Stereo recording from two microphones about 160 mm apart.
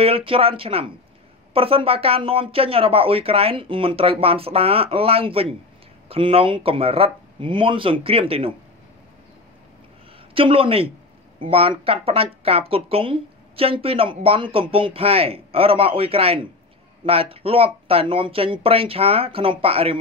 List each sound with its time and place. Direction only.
0.0 s speech: 35° right (ahead or behind)
10.3 s speech: 35° right (ahead or behind)